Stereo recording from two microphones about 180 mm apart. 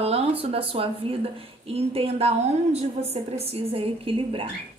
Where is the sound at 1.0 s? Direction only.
30° right (ahead or behind).